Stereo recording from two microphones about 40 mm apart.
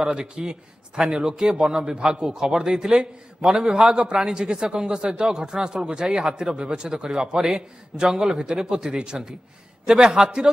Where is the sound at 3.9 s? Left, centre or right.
Centre.